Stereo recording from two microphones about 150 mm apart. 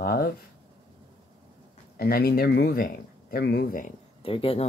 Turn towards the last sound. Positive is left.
turn(degrees=40)  # may be behind; listen again after turning